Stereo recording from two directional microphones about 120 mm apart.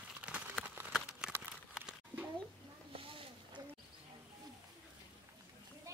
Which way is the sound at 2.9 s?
50° right (ahead or behind).